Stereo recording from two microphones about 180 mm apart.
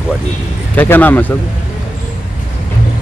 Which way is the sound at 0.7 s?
10° left (ahead or behind).